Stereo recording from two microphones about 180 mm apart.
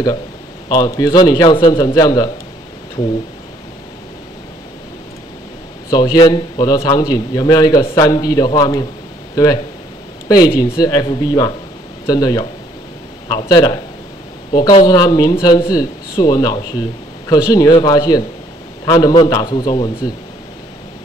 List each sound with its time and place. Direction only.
0.7 s a man's voice: 20° left (ahead or behind)
5.9 s a man's voice: 20° left (ahead or behind)